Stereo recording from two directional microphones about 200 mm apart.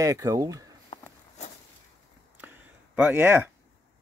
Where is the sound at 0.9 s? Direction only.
35° left (ahead or behind).